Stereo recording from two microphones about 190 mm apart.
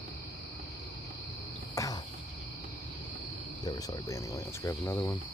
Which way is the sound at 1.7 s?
20° left (ahead or behind).